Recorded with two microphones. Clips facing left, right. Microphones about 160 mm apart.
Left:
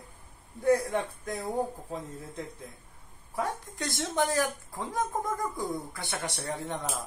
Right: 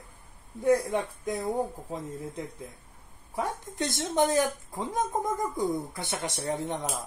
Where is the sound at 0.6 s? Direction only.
15° right (ahead or behind).